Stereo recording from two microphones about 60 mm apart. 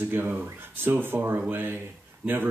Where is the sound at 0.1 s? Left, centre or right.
Right.